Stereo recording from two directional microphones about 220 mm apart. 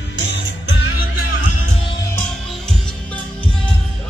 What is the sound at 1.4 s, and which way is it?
Music, 90° left.